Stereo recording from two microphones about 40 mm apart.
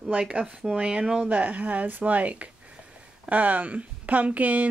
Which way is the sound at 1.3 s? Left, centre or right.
Right.